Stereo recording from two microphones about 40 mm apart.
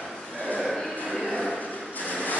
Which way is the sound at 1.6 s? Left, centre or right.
Left.